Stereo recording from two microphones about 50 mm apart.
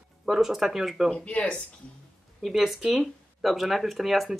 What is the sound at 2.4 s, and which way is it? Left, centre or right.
A woman's voice, centre.